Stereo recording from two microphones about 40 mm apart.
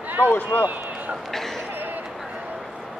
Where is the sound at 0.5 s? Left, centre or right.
Left.